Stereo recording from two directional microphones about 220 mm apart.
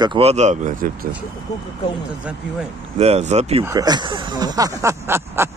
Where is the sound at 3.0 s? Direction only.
30° right (ahead or behind).